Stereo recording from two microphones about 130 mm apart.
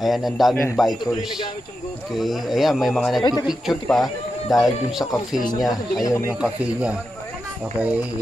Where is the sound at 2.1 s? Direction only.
Centre (ahead or behind).